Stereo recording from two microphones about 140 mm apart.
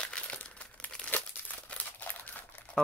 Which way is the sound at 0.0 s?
10° left (ahead or behind).